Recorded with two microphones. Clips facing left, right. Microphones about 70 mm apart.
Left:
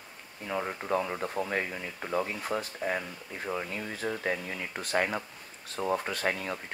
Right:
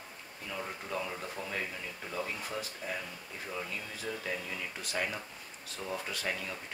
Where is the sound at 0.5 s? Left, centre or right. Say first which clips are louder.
Left 8 dB; left.